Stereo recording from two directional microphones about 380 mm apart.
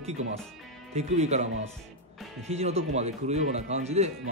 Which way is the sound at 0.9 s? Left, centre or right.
Centre.